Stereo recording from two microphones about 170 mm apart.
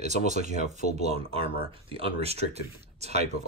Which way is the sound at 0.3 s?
45° right (ahead or behind).